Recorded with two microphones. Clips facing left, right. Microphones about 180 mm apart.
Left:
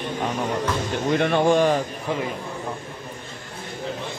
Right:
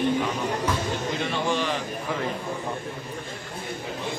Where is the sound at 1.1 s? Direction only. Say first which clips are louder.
Left 11 dB; 60° left (ahead or behind).